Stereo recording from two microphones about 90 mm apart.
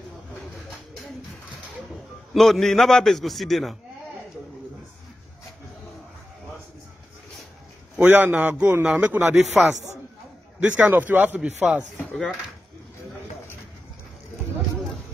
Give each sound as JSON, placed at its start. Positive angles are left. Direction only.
{"t": 2.3, "sound": "a man's voice", "side_deg": 5}
{"t": 8.0, "sound": "a man's voice", "side_deg": -20}
{"t": 9.3, "sound": "a man's voice", "side_deg": -5}
{"t": 10.6, "sound": "speech", "side_deg": -15}
{"t": 12.1, "sound": "speech", "side_deg": 0}